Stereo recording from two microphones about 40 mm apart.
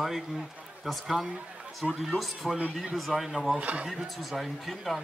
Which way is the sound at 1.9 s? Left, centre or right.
Centre.